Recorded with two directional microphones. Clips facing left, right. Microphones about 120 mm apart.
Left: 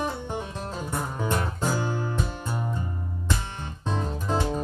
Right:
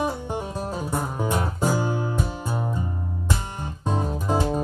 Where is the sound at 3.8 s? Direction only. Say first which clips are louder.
Right 4 dB; 10° right (ahead or behind).